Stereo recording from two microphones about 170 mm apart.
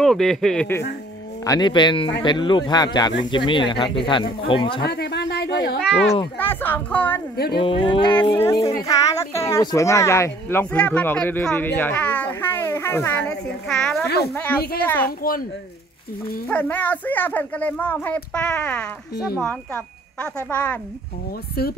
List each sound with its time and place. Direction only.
0.0 s speech: centre (ahead or behind)
1.4 s speech: 25° left (ahead or behind)
4.8 s a sound: 80° left
5.8 s speech: centre (ahead or behind)
6.3 s speech: 10° left (ahead or behind)
7.3 s speech: 65° left (ahead or behind)
7.6 s speech: 30° left (ahead or behind); by 14.0 s 5° left (ahead or behind)
14.0 s speech: 70° left (ahead or behind)
14.3 s speech: 10° left (ahead or behind)
15.0 s speech: 60° left (ahead or behind)
16.4 s speech: 10° left (ahead or behind)
21.6 s speech: 65° left (ahead or behind)